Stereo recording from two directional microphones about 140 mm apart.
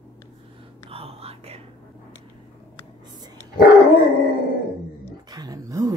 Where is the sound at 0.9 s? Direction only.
45° right (ahead or behind).